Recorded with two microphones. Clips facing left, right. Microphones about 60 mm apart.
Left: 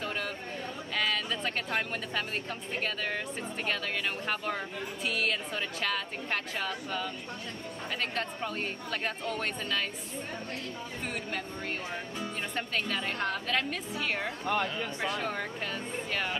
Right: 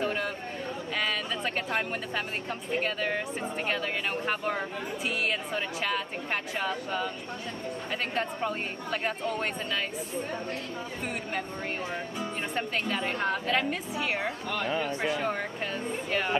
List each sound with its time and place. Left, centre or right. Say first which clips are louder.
0.0 s chatter: right 5 dB; centre
0.9 s speech: even; centre
8.1 s speech: right 4 dB; centre
12.2 s speech: right 3 dB; centre
14.7 s speech: right 5 dB; right
15.0 s speech: right 3 dB; centre